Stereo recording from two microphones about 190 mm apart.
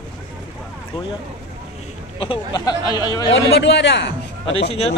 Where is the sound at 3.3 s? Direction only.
65° left (ahead or behind).